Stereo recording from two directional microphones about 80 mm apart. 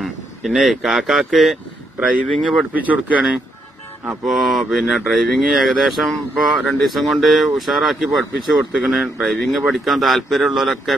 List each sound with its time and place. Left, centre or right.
0.0 s speech: centre
2.0 s speech: centre
4.3 s speech: centre